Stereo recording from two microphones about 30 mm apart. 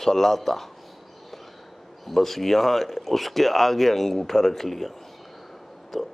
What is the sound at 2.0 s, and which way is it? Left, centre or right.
Speech, centre.